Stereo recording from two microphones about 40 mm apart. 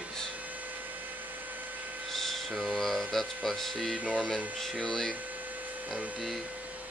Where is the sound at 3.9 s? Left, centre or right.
Right.